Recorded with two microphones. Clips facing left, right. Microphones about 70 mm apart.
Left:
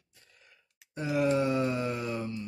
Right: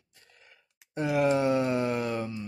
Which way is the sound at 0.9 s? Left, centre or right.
Right.